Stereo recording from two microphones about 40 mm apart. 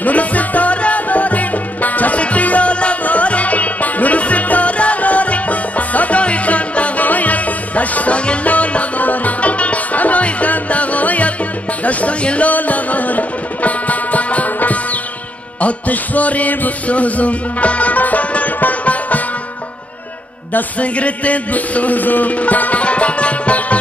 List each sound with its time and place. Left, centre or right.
0.0 s music: left
11.8 s speech: left
12.4 s music: left
20.8 s music: left